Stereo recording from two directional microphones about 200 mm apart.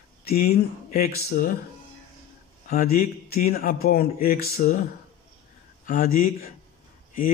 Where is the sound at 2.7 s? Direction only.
50° left (ahead or behind).